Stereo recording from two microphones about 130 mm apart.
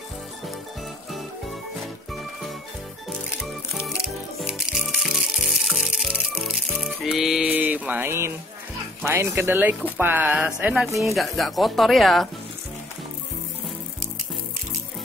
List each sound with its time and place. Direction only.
3.3 s music: 5° right (ahead or behind)
9.0 s speech: 20° right (ahead or behind); by 12.3 s centre (ahead or behind)